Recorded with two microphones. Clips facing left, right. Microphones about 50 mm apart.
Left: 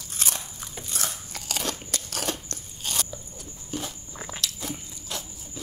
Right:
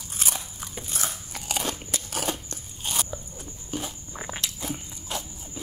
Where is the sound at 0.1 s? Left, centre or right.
Centre.